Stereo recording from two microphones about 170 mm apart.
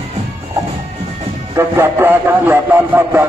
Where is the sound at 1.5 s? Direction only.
15° right (ahead or behind).